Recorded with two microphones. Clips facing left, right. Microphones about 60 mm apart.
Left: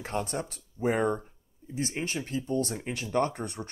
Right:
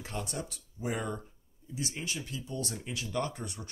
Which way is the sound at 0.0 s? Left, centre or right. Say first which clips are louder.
Left 6 dB; left.